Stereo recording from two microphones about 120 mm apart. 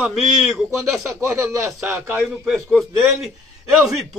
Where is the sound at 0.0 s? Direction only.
5° right (ahead or behind).